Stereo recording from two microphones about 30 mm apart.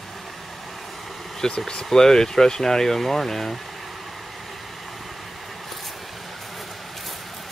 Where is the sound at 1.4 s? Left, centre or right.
Centre.